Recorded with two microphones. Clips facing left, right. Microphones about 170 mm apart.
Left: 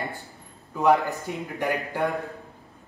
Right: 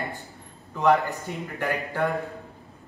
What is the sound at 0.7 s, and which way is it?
A man's voice, 15° left (ahead or behind).